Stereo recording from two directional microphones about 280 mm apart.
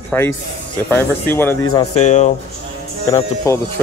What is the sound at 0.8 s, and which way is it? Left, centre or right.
Speech, centre.